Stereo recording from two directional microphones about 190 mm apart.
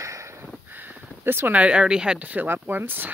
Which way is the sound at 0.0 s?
15° right (ahead or behind).